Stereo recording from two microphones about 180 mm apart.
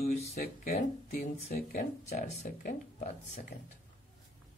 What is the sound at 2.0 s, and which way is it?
Speech, 40° left (ahead or behind).